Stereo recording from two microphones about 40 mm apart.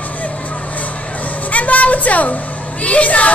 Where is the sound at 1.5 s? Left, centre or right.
Left.